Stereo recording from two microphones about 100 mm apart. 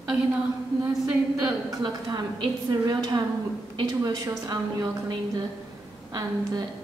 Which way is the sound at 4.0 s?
35° right (ahead or behind).